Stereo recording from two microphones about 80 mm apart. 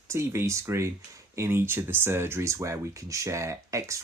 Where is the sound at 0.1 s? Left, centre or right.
Right.